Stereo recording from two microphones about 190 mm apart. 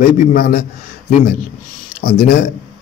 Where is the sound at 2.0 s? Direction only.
45° left (ahead or behind).